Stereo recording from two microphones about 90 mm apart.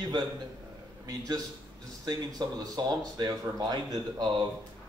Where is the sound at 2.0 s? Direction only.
45° right (ahead or behind).